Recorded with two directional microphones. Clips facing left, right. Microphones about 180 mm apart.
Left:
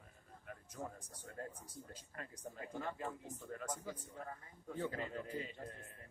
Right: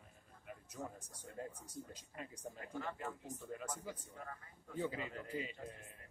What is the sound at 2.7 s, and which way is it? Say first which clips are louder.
Speech: left 1 dB; 25° left (ahead or behind).